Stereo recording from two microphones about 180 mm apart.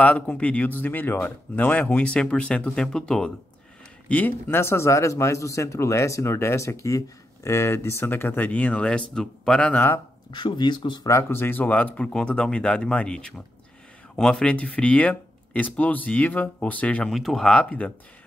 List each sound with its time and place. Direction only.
0.0 s speech: 5° left (ahead or behind)
10.3 s speech: 25° left (ahead or behind); by 17.9 s 5° left (ahead or behind)